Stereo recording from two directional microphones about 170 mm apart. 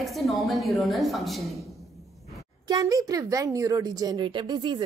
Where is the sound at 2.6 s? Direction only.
20° right (ahead or behind).